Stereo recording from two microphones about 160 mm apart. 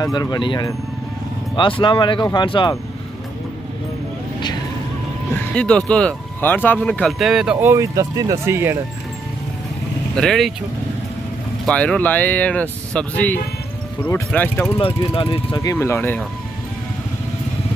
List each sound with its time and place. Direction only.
0.0 s speech: 25° left (ahead or behind)
1.8 s speech: 30° left (ahead or behind)
5.5 s speech: 5° left (ahead or behind)
7.6 s speech: 20° right (ahead or behind)
10.1 s speech: 5° left (ahead or behind)
11.6 s speech: 5° left (ahead or behind)
14.8 s speech: 35° left (ahead or behind)
15.6 s speech: 20° left (ahead or behind)